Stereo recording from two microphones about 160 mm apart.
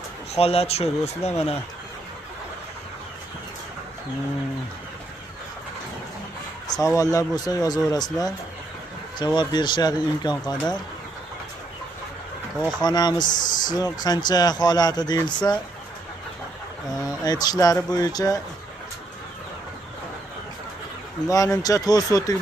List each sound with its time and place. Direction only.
0.3 s speech: 40° left (ahead or behind)
6.7 s a man's voice: 20° left (ahead or behind)
12.7 s a man's voice: 25° left (ahead or behind)
17.2 s a man's voice: 25° left (ahead or behind)
21.3 s a man's voice: 20° left (ahead or behind)